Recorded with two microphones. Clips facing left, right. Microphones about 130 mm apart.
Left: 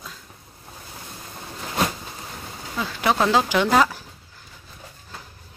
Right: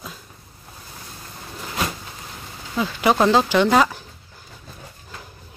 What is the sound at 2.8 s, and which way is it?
Speech, 5° right (ahead or behind).